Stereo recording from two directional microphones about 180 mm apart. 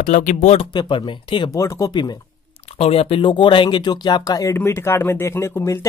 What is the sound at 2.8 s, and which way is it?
Speech, 35° left (ahead or behind).